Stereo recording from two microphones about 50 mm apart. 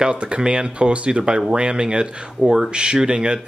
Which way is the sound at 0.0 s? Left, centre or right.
Right.